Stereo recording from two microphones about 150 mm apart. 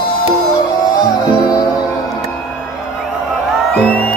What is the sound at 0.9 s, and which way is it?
Music, 25° left (ahead or behind).